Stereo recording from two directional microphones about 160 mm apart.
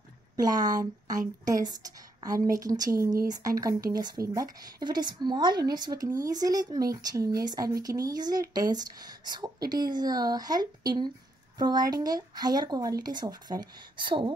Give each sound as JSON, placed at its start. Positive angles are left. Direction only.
{"t": 0.4, "sound": "a woman's voice", "side_deg": -25}